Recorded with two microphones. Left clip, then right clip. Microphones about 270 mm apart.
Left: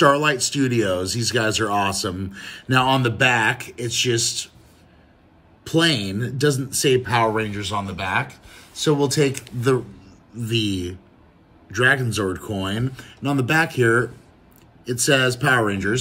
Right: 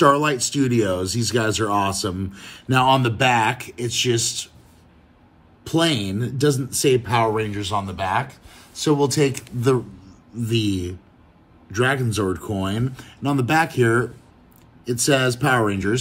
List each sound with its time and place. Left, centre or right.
0.0 s speech: centre
5.6 s speech: centre